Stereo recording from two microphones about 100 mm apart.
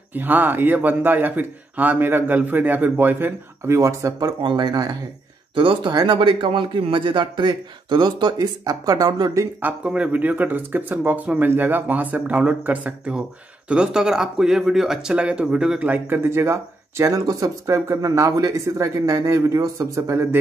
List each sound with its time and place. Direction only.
0.1 s speech: 20° right (ahead or behind)
4.4 s a man's voice: 50° right (ahead or behind)
5.5 s a man's voice: 55° right (ahead or behind); by 9.5 s 35° right (ahead or behind)
9.6 s speech: 15° right (ahead or behind)